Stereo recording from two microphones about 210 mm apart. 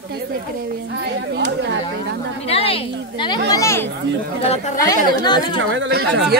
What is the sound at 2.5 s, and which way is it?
Speech, 30° left (ahead or behind).